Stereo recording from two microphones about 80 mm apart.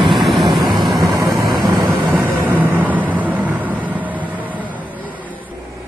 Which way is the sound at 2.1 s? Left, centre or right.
Right.